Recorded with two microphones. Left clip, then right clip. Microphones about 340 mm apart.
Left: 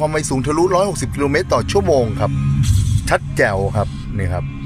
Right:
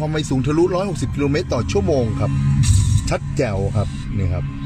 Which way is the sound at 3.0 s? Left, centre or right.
Left.